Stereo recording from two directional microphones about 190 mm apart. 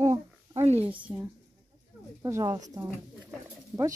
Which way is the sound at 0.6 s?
35° right (ahead or behind).